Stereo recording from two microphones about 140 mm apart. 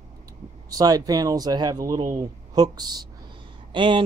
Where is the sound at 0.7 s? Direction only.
25° right (ahead or behind).